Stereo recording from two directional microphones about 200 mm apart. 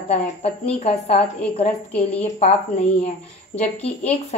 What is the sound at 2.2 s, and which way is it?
Speech, 35° left (ahead or behind).